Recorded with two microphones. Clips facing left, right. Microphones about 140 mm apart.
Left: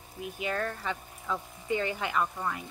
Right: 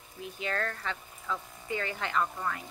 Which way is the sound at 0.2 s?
15° left (ahead or behind).